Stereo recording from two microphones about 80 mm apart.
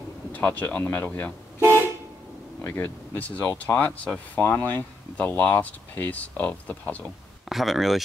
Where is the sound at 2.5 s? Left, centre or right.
Left.